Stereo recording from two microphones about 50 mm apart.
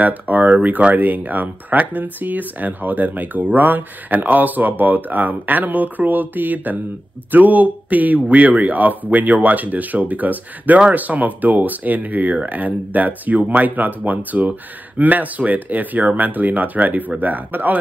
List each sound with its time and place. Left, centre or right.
0.0 s speech: right